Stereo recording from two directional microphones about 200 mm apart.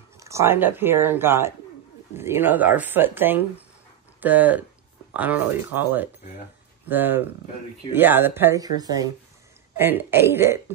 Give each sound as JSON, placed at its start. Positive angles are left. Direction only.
{"t": 0.2, "sound": "speech", "side_deg": -15}